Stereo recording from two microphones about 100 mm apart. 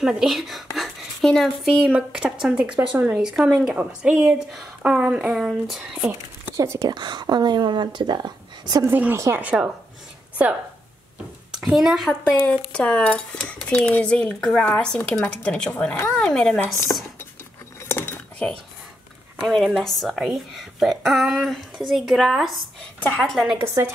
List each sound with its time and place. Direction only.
0.0 s a woman's voice: centre (ahead or behind)
1.9 s speech: 10° right (ahead or behind)
3.7 s speech: 15° right (ahead or behind)
4.5 s speech: centre (ahead or behind)
4.9 s a woman's voice: 15° right (ahead or behind)
6.5 s speech: 30° right (ahead or behind)
6.9 s speech: 45° right (ahead or behind)
8.8 s a woman's voice: 20° right (ahead or behind)
11.6 s a woman's voice: 5° right (ahead or behind)
16.6 s dishes: 30° left (ahead or behind)
17.8 s cutlery: 20° left (ahead or behind)
19.4 s a woman's voice: 5° left (ahead or behind)
22.9 s a woman's voice: 15° left (ahead or behind)
23.2 s a woman's voice: centre (ahead or behind)